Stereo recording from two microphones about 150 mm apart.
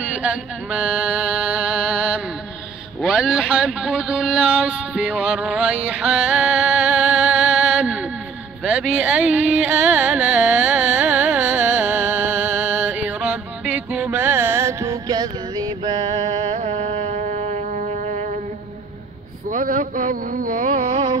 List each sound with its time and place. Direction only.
0.0 s speech: 5° right (ahead or behind)
8.6 s carnatic music: 10° right (ahead or behind); by 16.5 s 35° right (ahead or behind)
16.5 s music: 45° right (ahead or behind)
19.5 s a sound: 60° right (ahead or behind)
20.9 s carnatic music: 30° right (ahead or behind)